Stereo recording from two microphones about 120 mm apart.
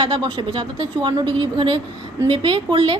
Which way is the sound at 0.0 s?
45° right (ahead or behind).